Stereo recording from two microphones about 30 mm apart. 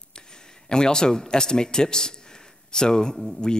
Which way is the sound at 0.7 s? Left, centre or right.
Left.